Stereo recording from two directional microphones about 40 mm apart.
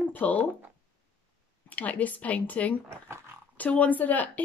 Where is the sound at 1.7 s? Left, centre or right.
Left.